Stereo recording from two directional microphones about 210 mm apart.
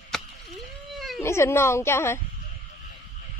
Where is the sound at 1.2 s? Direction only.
10° left (ahead or behind).